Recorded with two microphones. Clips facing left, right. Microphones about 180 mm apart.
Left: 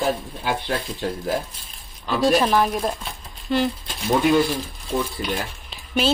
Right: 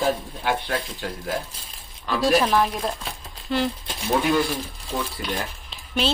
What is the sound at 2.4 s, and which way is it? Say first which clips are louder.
Speech: left 2 dB; 10° left (ahead or behind).